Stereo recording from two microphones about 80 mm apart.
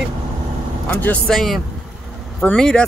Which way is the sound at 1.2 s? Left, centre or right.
Centre.